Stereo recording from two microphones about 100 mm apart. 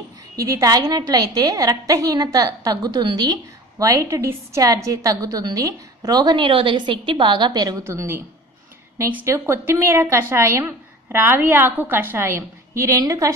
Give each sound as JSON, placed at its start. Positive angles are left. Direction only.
{"t": 0.4, "sound": "a woman's voice", "side_deg": -35}
{"t": 7.8, "sound": "a woman's voice", "side_deg": -30}